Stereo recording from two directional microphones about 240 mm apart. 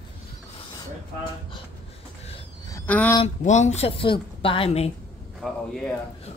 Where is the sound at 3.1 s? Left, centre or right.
Left.